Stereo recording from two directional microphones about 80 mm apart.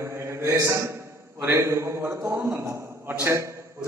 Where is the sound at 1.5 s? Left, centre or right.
Right.